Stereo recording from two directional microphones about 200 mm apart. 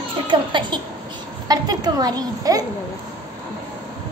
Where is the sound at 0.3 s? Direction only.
25° right (ahead or behind).